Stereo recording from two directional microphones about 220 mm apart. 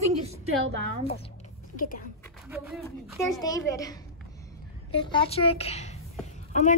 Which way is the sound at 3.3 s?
15° left (ahead or behind).